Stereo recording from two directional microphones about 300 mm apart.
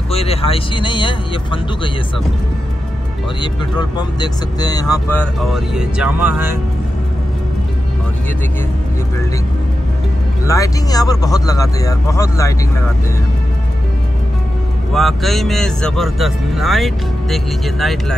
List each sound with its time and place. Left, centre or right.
0.1 s speech: centre
3.9 s a man's voice: centre
10.4 s speech: centre
14.9 s a man's voice: centre